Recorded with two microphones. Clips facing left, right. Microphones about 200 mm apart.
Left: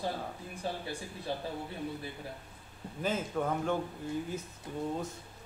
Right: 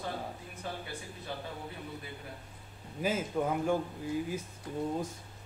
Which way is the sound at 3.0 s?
10° right (ahead or behind).